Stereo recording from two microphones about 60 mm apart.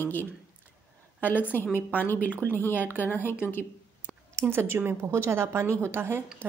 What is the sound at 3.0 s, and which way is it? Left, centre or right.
Speech, left.